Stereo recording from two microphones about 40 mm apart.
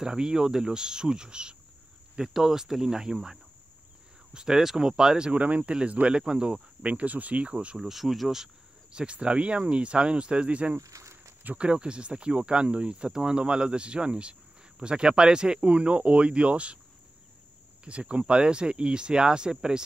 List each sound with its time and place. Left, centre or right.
0.0 s speech: centre
2.1 s speech: centre
5.3 s speech: right
6.8 s speech: right
7.8 s speech: centre
8.9 s speech: right
17.8 s speech: right